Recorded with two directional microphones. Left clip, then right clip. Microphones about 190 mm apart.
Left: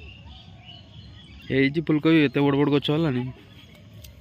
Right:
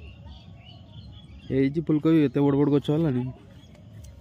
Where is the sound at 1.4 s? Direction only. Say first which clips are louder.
Left 3 dB; 5° right (ahead or behind).